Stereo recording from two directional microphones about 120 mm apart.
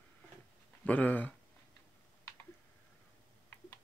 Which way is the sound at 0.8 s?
15° left (ahead or behind).